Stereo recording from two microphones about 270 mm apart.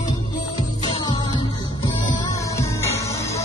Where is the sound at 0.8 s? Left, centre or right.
Centre.